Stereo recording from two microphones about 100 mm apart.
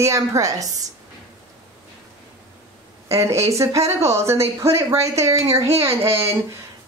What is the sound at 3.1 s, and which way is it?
A woman's voice, 30° right (ahead or behind).